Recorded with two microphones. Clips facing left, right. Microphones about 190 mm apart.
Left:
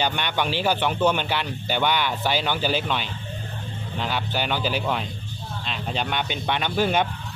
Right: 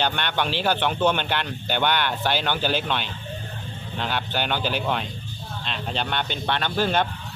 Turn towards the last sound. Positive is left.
turn(degrees=10)  # may be behind; listen again after turning